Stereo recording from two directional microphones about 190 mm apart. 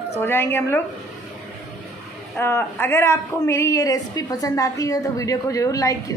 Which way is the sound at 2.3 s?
15° left (ahead or behind).